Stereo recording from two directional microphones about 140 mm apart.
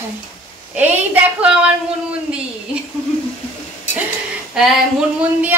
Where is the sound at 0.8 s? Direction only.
10° right (ahead or behind).